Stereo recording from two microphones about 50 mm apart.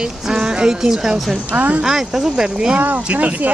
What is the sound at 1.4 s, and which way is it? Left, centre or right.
Speech, right.